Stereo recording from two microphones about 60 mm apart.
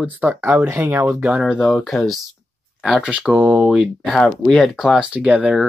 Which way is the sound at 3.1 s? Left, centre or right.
Right.